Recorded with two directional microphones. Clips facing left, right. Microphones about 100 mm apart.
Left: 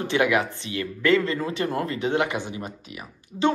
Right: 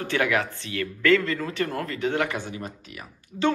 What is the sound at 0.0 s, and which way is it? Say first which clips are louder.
Speech: left 3 dB; 20° left (ahead or behind).